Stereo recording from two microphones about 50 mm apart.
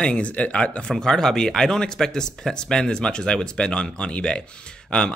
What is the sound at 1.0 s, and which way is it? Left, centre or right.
Speech, centre.